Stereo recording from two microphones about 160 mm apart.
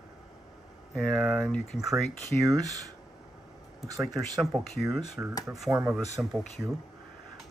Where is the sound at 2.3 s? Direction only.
10° left (ahead or behind).